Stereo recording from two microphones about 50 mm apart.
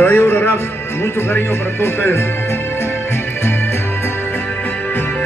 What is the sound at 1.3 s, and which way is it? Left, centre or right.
Speech, left.